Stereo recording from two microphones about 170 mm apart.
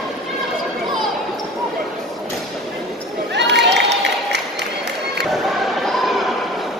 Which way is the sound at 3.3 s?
90° right.